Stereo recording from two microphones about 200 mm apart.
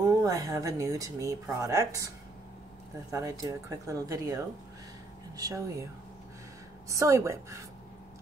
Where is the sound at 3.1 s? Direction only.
15° right (ahead or behind).